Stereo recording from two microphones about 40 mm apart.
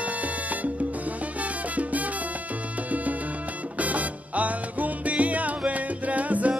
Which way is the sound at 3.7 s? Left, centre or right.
Right.